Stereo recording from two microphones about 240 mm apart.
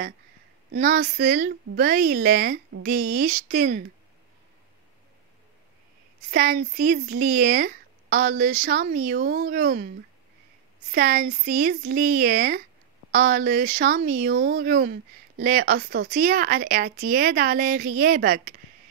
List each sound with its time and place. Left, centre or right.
0.7 s speech: right
6.3 s speech: right
10.9 s speech: right